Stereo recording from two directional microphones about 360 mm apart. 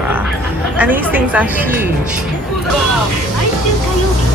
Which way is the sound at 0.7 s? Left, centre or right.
Centre.